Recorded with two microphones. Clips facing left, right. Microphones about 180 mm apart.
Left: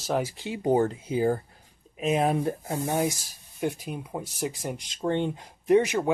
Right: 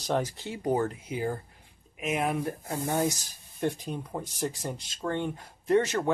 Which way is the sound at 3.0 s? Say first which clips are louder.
Left 1 dB; 10° left (ahead or behind).